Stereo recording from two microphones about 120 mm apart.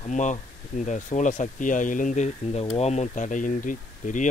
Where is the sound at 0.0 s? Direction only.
90° left.